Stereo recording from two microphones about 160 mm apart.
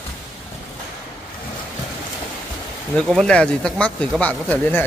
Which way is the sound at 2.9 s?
5° left (ahead or behind).